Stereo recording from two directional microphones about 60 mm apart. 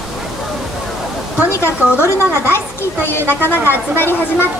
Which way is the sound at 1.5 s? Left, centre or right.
Left.